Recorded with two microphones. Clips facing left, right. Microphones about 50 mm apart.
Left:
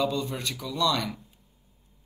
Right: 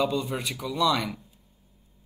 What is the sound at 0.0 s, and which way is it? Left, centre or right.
Speech, centre.